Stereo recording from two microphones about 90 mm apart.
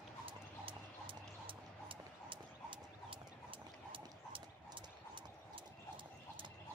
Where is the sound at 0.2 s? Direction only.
85° right.